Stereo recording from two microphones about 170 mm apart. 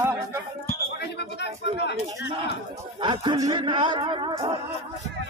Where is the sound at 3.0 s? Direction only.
30° right (ahead or behind).